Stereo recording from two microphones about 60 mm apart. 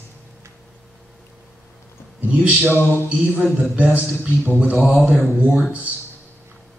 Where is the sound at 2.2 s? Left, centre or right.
Right.